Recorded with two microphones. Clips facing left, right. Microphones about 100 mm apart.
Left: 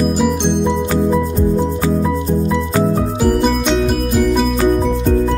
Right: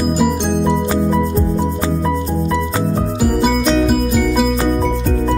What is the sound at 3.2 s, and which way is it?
Music, 5° right (ahead or behind).